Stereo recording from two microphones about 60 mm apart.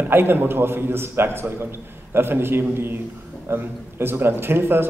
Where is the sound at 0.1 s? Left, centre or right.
Right.